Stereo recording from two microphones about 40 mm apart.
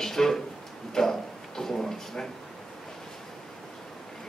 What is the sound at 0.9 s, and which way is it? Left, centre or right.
Speech, centre.